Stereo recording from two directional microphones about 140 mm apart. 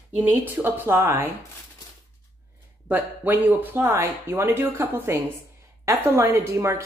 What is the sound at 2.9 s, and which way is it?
Speech, 15° right (ahead or behind).